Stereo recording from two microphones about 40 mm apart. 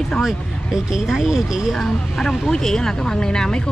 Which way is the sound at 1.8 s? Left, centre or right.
Centre.